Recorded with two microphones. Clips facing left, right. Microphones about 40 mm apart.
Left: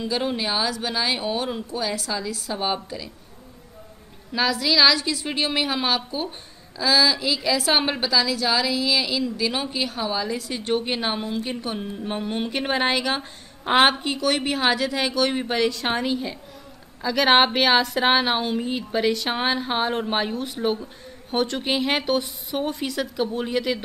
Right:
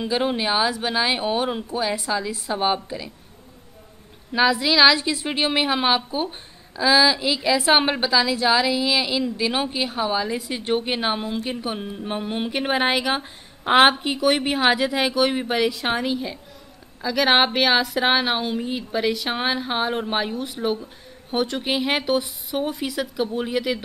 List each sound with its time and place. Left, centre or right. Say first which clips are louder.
0.0 s speech: right 3 dB; centre
4.3 s a woman's voice: right 3 dB; centre